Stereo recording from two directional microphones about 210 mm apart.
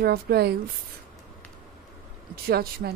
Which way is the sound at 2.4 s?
45° right (ahead or behind).